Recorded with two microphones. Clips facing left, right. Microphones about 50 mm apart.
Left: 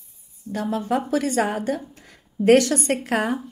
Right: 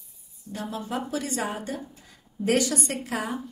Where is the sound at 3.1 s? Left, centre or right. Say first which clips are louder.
Left 8 dB; left.